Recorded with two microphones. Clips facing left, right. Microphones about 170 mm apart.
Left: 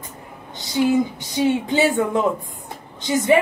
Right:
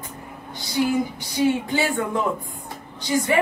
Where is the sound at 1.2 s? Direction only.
20° left (ahead or behind).